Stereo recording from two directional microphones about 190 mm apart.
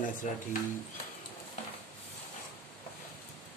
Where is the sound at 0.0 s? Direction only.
45° left (ahead or behind).